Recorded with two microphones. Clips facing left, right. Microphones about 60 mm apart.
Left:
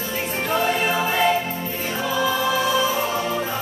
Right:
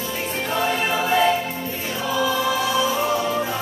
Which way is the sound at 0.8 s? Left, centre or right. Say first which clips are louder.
Right 1 dB; centre.